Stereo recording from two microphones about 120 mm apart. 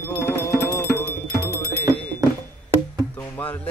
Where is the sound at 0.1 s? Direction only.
20° left (ahead or behind).